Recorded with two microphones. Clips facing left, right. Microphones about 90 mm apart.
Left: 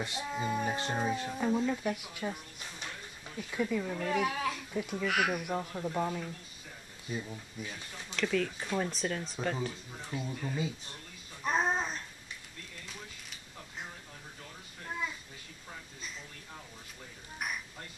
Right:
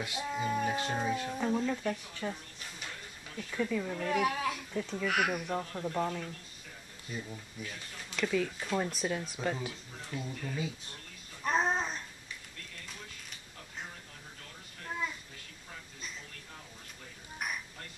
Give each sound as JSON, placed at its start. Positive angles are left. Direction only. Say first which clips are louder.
{"t": 0.2, "sound": "speech", "louder": "right 2 dB", "side_deg": 5}
{"t": 3.3, "sound": "speech", "louder": "left 1 dB", "side_deg": 10}
{"t": 8.2, "sound": "speech", "louder": "even", "side_deg": -5}
{"t": 9.9, "sound": "speech", "louder": "even", "side_deg": 15}
{"t": 11.4, "sound": "babbling", "louder": "even", "side_deg": 0}
{"t": 12.8, "sound": "a sound", "louder": "left 1 dB", "side_deg": 0}
{"t": 14.9, "sound": "a sound", "louder": "right 1 dB", "side_deg": 0}